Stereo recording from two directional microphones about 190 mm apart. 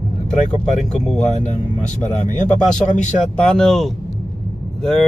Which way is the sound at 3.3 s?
5° left (ahead or behind).